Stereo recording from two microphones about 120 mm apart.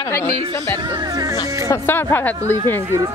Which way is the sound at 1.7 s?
20° left (ahead or behind).